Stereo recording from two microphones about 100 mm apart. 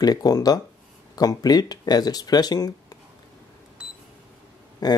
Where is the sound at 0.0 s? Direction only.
40° left (ahead or behind).